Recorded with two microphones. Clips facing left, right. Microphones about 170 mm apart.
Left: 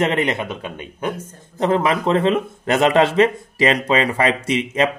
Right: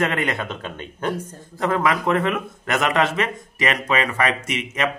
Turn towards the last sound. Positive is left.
turn(degrees=30)  # may be behind; listen again after turning